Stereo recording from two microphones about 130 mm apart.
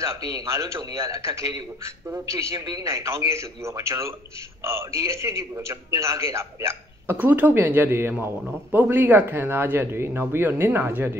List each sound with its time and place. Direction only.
0.0 s a man's voice: 25° right (ahead or behind)